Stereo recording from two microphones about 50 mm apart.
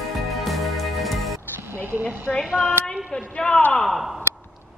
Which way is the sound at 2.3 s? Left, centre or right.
Left.